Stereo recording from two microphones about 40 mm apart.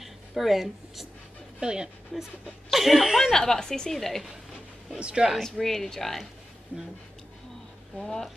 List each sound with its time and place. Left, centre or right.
0.0 s a sound: centre
1.6 s speech: centre
2.1 s dog: centre
2.7 s speech: centre
4.9 s speech: right
5.4 s speech: centre
6.7 s speech: right
8.0 s speech: centre